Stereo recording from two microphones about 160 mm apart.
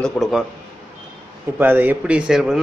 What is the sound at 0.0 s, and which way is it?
Speech, centre (ahead or behind).